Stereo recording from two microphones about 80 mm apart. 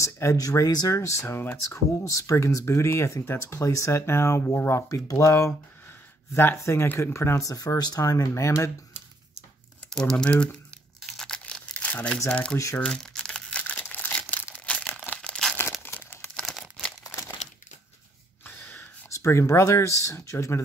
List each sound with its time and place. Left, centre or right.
0.0 s speech: left
9.8 s crumpling: centre
10.1 s speech: centre
11.0 s tearing: centre
12.3 s speech: centre
12.8 s crumpling: centre
15.8 s crumpling: left
16.3 s crumpling: centre
17.0 s crumpling: left
18.4 s a sound: left
19.0 s speech: left